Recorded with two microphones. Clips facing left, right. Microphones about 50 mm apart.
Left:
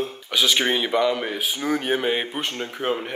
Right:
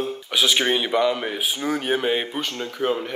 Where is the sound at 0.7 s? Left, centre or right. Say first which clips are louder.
Right 1 dB; centre.